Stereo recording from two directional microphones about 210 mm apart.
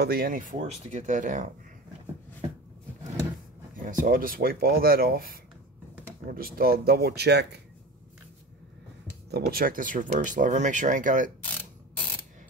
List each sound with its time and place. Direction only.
0.0 s speech: 45° right (ahead or behind)
3.8 s speech: 40° right (ahead or behind)
9.3 s speech: 45° right (ahead or behind)